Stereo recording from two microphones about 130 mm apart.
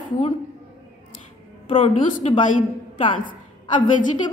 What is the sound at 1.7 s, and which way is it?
Speech, 45° left (ahead or behind).